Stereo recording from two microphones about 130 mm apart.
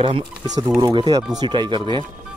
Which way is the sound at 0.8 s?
30° right (ahead or behind).